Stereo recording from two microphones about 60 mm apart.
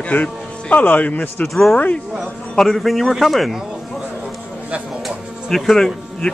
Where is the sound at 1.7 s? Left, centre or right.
Left.